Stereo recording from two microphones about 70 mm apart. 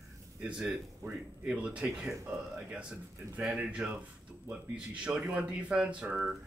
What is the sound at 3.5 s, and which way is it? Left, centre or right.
Speech, centre.